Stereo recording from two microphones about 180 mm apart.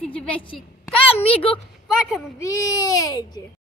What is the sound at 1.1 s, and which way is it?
Speech, 30° left (ahead or behind).